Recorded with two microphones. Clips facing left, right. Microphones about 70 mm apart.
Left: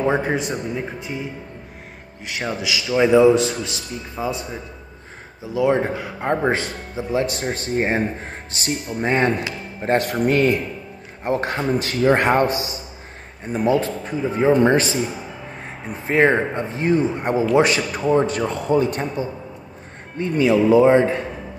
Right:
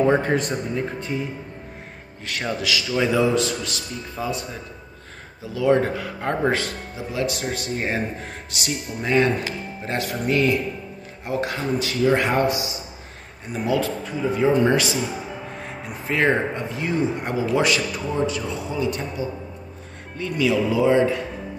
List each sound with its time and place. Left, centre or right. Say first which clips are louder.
0.0 s speech: right 1 dB; centre
3.1 s speech: left 8 dB; left
7.1 s a man's voice: left 3 dB; left